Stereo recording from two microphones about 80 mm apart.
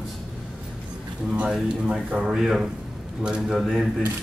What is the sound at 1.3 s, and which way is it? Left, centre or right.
Speech, centre.